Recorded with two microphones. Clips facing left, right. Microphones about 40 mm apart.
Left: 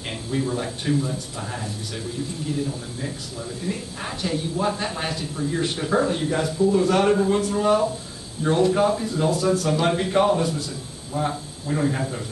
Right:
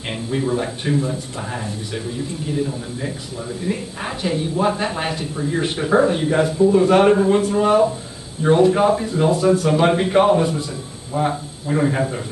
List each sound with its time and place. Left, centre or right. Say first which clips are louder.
0.3 s speech: right 4 dB; centre